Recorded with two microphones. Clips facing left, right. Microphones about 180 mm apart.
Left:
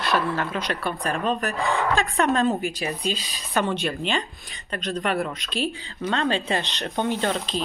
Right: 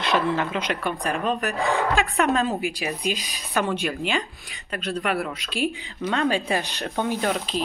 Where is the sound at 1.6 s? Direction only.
35° right (ahead or behind).